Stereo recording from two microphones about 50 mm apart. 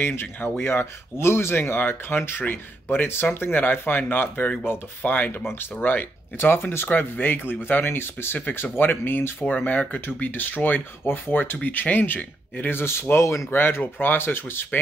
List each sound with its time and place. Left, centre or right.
0.0 s speech: left
6.9 s speech: left
9.5 s speech: left
11.1 s speech: left
12.7 s speech: left
13.5 s speech: left